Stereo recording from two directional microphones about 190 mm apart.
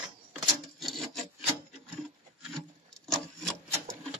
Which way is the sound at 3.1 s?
5° left (ahead or behind).